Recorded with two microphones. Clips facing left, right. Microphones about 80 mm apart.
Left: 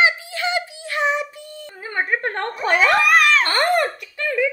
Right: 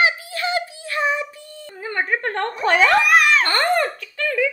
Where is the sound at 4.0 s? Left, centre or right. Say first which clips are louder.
Right 1 dB; centre.